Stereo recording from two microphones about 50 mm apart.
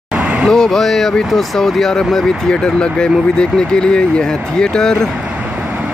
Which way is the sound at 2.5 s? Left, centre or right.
Centre.